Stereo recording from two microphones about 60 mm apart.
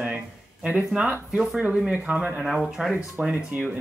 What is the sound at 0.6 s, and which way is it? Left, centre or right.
Speech, centre.